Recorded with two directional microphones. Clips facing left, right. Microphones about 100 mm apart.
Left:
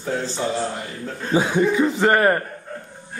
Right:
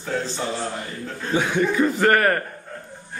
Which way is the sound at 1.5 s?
15° left (ahead or behind).